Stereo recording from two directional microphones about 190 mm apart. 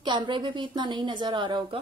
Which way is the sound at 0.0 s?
25° right (ahead or behind).